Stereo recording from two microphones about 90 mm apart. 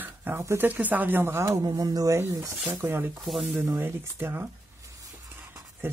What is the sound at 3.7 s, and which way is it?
Speech, 25° right (ahead or behind).